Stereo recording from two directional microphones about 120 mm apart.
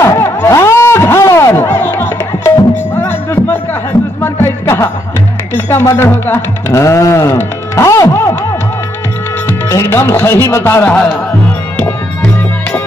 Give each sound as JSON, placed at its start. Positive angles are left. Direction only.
{"t": 0.0, "sound": "a sound", "side_deg": 25}
{"t": 4.2, "sound": "music", "side_deg": 20}
{"t": 5.5, "sound": "speech", "side_deg": 20}
{"t": 9.5, "sound": "speech", "side_deg": 25}
{"t": 11.7, "sound": "music", "side_deg": 15}